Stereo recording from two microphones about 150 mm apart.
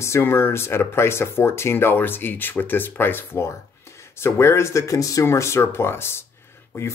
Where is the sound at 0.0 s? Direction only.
15° left (ahead or behind).